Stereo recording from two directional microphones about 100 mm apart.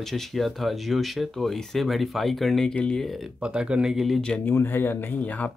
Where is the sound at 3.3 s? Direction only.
10° right (ahead or behind).